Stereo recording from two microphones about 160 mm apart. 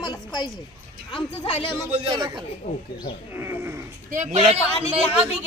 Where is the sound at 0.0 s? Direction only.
25° left (ahead or behind).